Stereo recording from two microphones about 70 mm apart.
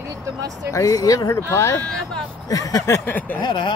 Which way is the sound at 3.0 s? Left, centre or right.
Left.